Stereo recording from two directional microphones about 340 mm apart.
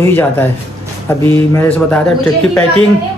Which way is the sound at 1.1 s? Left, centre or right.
Centre.